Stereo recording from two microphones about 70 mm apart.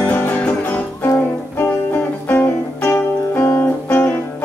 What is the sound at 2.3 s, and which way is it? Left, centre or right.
Music, left.